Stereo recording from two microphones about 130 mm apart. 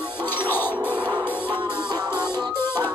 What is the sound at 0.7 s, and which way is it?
Music, 10° right (ahead or behind).